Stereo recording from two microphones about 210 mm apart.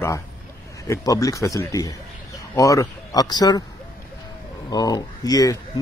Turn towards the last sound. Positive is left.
turn(degrees=15)  # may be behind; listen again after turning